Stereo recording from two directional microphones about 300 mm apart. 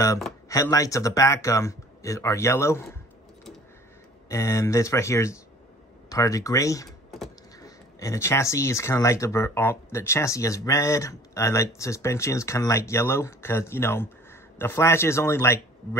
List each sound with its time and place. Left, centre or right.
0.5 s speech: centre
4.3 s speech: centre